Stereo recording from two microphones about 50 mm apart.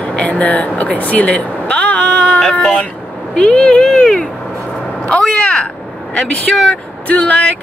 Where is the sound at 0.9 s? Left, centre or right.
Left.